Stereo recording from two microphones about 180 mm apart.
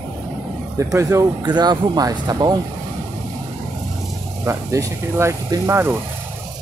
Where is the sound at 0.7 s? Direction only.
20° right (ahead or behind).